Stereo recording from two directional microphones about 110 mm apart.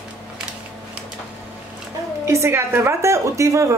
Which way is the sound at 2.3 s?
25° right (ahead or behind).